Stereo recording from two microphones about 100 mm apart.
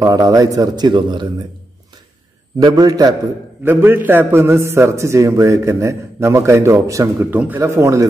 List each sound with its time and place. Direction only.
0.0 s a man's voice: 35° right (ahead or behind)
0.8 s speech: 50° right (ahead or behind)
2.6 s a man's voice: 40° right (ahead or behind)
3.6 s a man's voice: 20° right (ahead or behind)
7.3 s speech: 15° right (ahead or behind)
7.6 s a man's voice: 30° right (ahead or behind)